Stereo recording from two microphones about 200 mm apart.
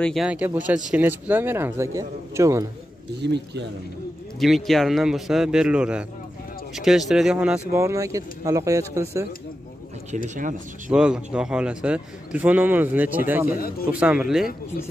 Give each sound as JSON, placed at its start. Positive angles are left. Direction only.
{"t": 0.0, "sound": "speech", "side_deg": 0}
{"t": 3.2, "sound": "speech", "side_deg": -60}
{"t": 4.4, "sound": "speech", "side_deg": 0}
{"t": 10.1, "sound": "speech", "side_deg": -40}
{"t": 10.9, "sound": "speech", "side_deg": -5}
{"t": 13.5, "sound": "speech", "side_deg": 50}
{"t": 13.8, "sound": "speech", "side_deg": -5}